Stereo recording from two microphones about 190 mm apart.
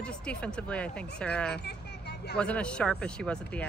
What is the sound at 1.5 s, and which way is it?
Vehicle, 60° left (ahead or behind).